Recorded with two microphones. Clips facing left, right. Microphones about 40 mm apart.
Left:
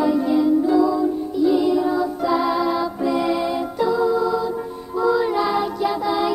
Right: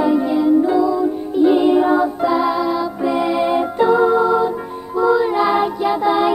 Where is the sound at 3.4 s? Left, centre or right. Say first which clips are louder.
Right 6 dB; right.